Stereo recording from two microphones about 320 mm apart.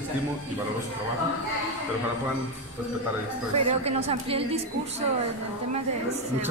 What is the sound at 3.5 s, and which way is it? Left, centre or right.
Speech, centre.